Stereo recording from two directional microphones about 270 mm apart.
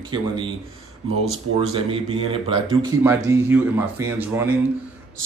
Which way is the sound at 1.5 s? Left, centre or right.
Centre.